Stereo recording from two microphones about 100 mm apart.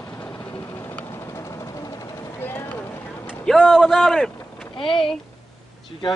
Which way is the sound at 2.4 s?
20° left (ahead or behind).